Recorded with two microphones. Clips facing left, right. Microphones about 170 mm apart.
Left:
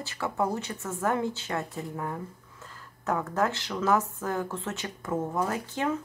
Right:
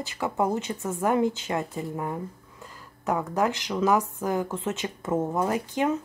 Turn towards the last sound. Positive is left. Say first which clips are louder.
# right 4 dB
turn(degrees=-20)  # may be behind; listen again after turning